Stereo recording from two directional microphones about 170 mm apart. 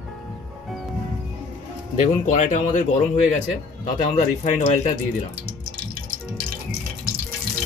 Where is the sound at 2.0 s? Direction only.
45° left (ahead or behind).